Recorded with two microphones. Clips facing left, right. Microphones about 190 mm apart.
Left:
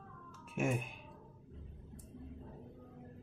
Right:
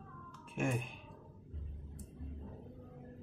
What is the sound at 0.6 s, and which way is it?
Speech, 5° left (ahead or behind).